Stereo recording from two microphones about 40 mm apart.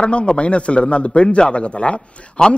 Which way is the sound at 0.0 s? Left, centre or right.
Left.